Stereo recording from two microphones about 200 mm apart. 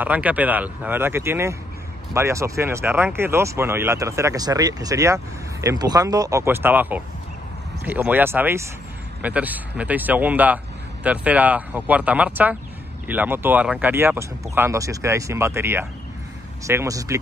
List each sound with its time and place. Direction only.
0.0 s speech: 10° right (ahead or behind)